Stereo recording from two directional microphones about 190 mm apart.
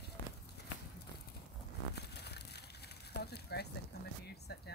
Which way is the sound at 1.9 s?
60° left (ahead or behind).